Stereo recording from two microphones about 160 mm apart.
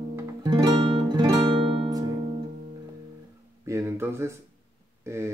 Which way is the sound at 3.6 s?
20° right (ahead or behind).